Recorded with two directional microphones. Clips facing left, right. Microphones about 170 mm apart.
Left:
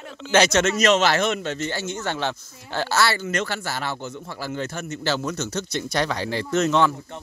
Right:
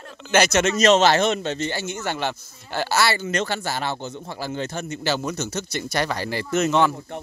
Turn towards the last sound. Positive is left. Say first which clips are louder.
# even
turn(degrees=-10)  # may be behind; listen again after turning